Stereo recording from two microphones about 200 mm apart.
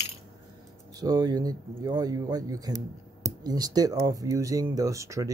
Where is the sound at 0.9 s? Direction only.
20° right (ahead or behind).